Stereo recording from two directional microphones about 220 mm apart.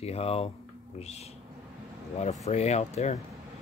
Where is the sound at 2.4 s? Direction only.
30° left (ahead or behind).